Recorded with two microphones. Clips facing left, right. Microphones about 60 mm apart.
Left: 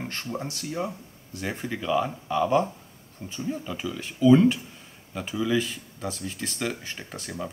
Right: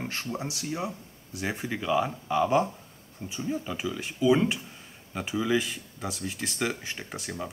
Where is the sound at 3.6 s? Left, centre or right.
Centre.